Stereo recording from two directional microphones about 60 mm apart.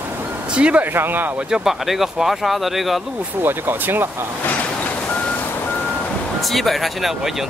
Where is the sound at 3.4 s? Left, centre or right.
Right.